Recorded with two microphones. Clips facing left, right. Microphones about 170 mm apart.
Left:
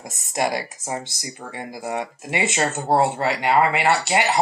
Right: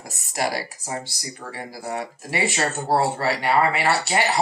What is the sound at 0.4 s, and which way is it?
Speech, 20° left (ahead or behind).